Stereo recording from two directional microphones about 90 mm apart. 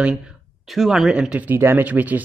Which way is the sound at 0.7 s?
Centre (ahead or behind).